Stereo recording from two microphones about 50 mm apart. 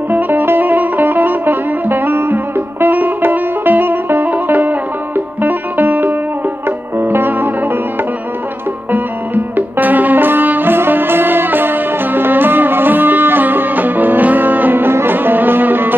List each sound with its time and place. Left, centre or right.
0.1 s music: right
8.9 s music: right